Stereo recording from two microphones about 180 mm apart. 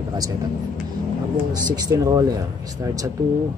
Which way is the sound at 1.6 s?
20° right (ahead or behind).